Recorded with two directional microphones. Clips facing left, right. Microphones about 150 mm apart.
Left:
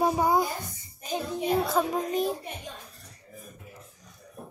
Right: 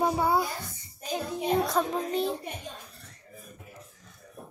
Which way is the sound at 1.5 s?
5° left (ahead or behind).